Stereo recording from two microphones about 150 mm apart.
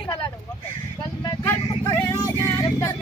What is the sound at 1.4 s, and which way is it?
Vehicle, 20° left (ahead or behind).